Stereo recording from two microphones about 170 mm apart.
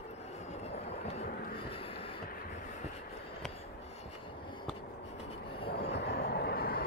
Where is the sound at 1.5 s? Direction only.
30° left (ahead or behind).